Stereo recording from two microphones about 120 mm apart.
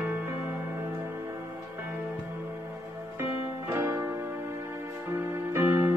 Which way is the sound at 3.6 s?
20° right (ahead or behind).